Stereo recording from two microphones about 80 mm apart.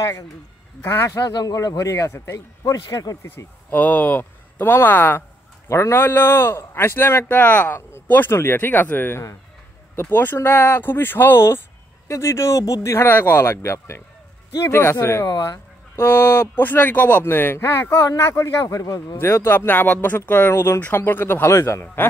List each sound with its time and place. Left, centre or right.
0.8 s a man's voice: left
1.2 s speech: left
1.9 s a man's voice: left
3.3 s a man's voice: left
12.9 s a man's voice: left
15.2 s speech: left
16.0 s a man's voice: left
18.6 s speech: left